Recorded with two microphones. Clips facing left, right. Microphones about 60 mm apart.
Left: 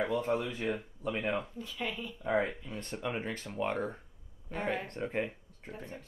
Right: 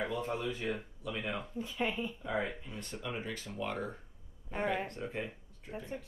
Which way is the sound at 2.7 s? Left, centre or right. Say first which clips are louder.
Left 4 dB; left.